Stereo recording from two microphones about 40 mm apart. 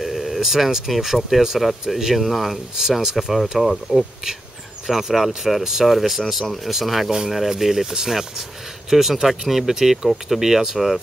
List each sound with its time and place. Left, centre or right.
0.0 s telephone: centre
0.9 s speech: centre
2.8 s speech: centre
3.5 s speech: centre